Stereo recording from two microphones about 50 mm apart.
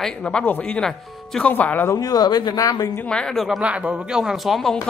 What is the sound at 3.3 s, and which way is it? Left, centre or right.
Speech, centre.